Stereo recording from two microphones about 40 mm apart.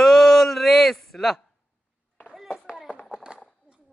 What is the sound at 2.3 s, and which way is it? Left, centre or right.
Clapping, centre.